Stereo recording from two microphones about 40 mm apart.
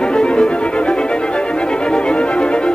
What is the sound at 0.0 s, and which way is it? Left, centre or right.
Violin, left.